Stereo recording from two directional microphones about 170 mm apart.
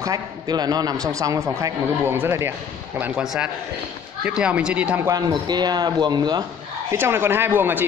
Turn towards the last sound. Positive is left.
turn(degrees=-10)  # may be behind; listen again after turning